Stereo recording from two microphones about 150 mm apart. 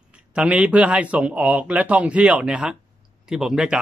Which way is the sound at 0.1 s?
5° right (ahead or behind).